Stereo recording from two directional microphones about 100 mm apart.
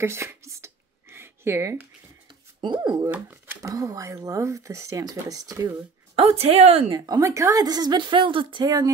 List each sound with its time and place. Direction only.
0.0 s speech: 25° right (ahead or behind)
1.1 s a sound: 25° right (ahead or behind)
2.6 s speech: 50° right (ahead or behind)
3.1 s speech: 15° right (ahead or behind)
3.6 s speech: 35° right (ahead or behind)
6.1 s speech: 80° right
6.9 s speech: 40° right (ahead or behind)